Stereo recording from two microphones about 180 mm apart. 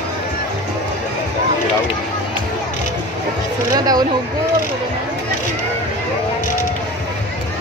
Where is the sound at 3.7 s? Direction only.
20° right (ahead or behind).